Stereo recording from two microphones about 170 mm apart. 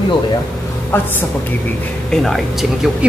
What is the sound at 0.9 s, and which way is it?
Speech, 15° left (ahead or behind).